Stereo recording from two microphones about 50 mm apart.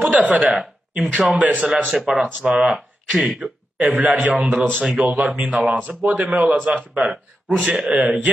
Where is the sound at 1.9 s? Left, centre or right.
Centre.